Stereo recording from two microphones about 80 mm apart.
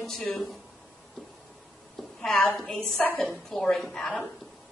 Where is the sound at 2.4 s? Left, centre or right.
Left.